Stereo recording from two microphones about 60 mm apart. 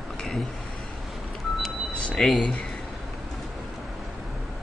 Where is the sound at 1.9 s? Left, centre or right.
Centre.